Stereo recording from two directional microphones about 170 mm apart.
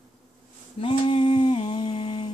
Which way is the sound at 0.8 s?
30° left (ahead or behind).